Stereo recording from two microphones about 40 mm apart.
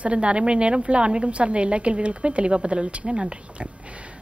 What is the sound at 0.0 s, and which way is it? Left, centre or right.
Speech, right.